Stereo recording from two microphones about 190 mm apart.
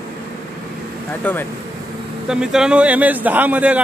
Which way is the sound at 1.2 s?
10° left (ahead or behind).